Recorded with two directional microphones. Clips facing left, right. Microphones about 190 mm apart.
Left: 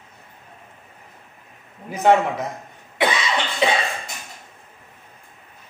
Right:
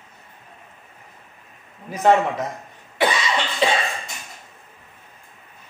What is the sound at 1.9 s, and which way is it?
Speech, 10° left (ahead or behind).